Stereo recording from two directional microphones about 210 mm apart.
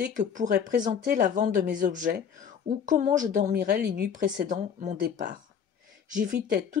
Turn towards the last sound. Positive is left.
turn(degrees=-40)  # may be behind; listen again after turning